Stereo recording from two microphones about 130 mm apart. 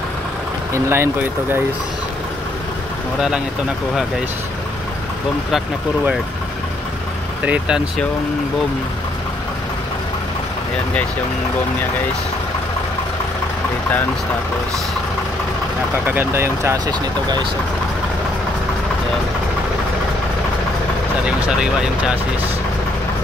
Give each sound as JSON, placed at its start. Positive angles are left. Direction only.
{"t": 0.7, "sound": "speech", "side_deg": -20}
{"t": 7.4, "sound": "speech", "side_deg": -10}
{"t": 16.1, "sound": "speech", "side_deg": -15}
{"t": 21.4, "sound": "speech", "side_deg": -5}